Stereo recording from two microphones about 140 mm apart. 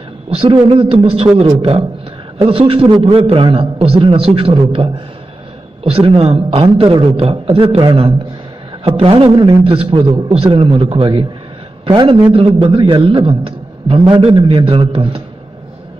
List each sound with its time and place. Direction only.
0.3 s a man's voice: 40° right (ahead or behind)